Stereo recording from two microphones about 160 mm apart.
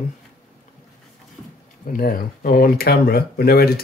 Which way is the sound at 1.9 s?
65° left (ahead or behind).